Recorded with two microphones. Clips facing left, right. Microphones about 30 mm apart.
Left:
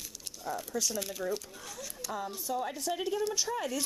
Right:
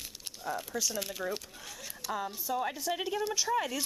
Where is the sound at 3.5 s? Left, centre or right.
Centre.